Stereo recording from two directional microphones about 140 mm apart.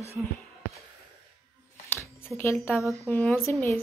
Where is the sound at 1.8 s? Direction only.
15° left (ahead or behind).